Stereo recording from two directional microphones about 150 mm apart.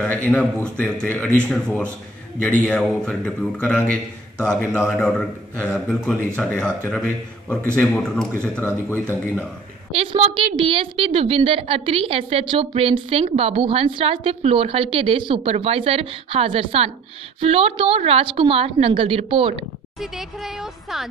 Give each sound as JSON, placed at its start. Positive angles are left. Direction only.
{"t": 0.0, "sound": "a man's voice", "side_deg": 10}
{"t": 2.4, "sound": "a man's voice", "side_deg": 10}
{"t": 9.9, "sound": "a woman's voice", "side_deg": -40}
{"t": 20.0, "sound": "speech", "side_deg": 0}